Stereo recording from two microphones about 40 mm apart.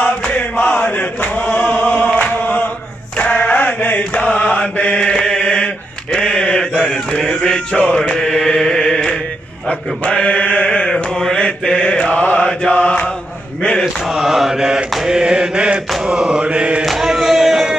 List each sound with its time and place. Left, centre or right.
0.2 s chant: left
3.5 s chant: left
4.2 s mantra: left
7.1 s male singing: centre
7.9 s chant: left
8.2 s chant: centre
9.7 s mantra: left
11.1 s mantra: centre
11.3 s mantra: left
12.8 s chant: left
14.0 s mantra: centre; by 16.8 s right
16.8 s a sound: centre